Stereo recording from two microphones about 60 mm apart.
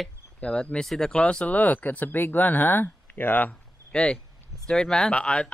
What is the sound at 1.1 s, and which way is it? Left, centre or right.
Speech, centre.